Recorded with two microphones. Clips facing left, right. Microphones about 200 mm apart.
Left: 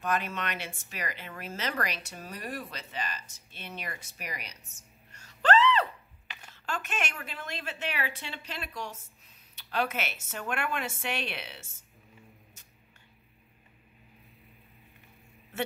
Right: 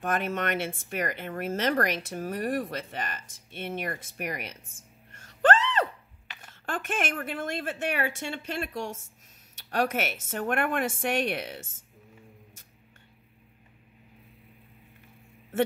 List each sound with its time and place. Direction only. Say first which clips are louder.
0.0 s speech: right 3 dB; 50° right (ahead or behind)